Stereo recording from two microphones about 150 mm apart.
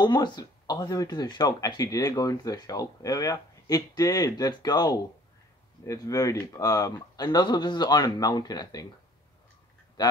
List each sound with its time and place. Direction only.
0.0 s speech: 30° left (ahead or behind)
10.0 s speech: 30° left (ahead or behind)